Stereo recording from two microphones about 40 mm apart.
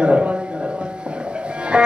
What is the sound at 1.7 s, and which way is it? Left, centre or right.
Speech, right.